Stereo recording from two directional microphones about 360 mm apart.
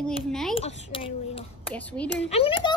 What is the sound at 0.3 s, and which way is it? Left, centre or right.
Speech, centre.